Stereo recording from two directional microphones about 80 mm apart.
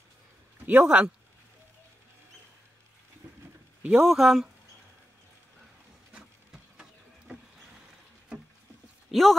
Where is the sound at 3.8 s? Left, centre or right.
Centre.